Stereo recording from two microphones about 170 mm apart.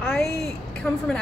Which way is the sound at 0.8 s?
15° left (ahead or behind).